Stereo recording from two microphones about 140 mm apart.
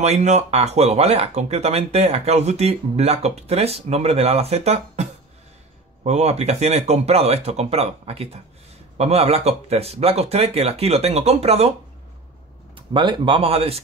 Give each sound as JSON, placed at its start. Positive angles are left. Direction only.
{"t": 0.0, "sound": "speech", "side_deg": -55}
{"t": 6.0, "sound": "speech", "side_deg": -50}
{"t": 12.7, "sound": "speech", "side_deg": -35}